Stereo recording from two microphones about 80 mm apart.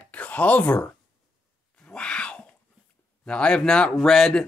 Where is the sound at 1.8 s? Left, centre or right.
Centre.